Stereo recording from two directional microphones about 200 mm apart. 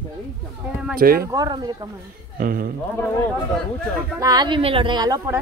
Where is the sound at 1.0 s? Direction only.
45° right (ahead or behind).